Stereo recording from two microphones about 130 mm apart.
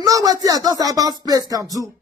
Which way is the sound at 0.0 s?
30° right (ahead or behind).